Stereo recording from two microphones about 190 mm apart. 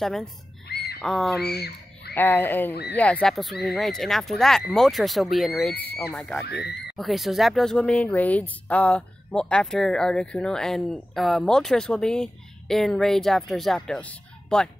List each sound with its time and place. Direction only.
0.0 s speech: centre (ahead or behind)
0.7 s a sound: 60° left (ahead or behind)
1.0 s speech: centre (ahead or behind)
1.4 s speech: 60° left (ahead or behind)
2.1 s speech: 10° left (ahead or behind)
2.7 s speech: 60° left (ahead or behind)
3.0 s speech: 5° left (ahead or behind)